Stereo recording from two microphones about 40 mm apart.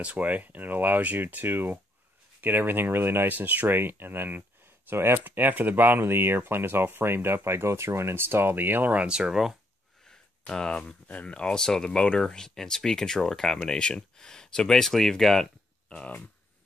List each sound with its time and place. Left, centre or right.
0.2 s speech: right
3.3 s speech: right
3.6 s speech: right
5.2 s speech: right
6.0 s speech: right
9.0 s speech: centre
10.0 s a sound: centre
10.8 s speech: left; by 15.4 s centre